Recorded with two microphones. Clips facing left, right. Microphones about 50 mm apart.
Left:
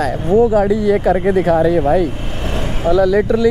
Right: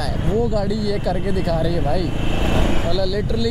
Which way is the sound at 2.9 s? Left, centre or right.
Left.